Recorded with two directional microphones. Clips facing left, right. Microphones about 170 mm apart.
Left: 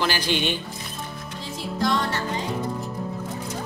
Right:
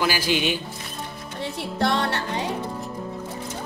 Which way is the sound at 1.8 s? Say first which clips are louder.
Right 1 dB; 65° right (ahead or behind).